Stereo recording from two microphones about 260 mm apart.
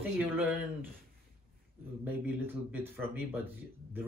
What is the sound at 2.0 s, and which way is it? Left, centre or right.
Speech, centre.